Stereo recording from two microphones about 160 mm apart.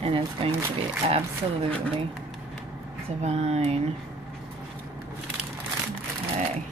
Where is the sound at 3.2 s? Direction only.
40° right (ahead or behind).